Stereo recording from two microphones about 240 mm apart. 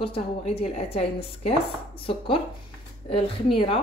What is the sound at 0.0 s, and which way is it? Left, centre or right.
Speech, left.